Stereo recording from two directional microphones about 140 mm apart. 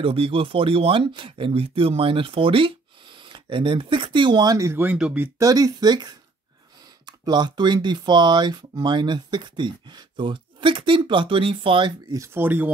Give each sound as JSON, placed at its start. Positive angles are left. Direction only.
{"t": 0.0, "sound": "speech", "side_deg": -40}
{"t": 5.4, "sound": "speech", "side_deg": -25}
{"t": 12.1, "sound": "speech", "side_deg": -20}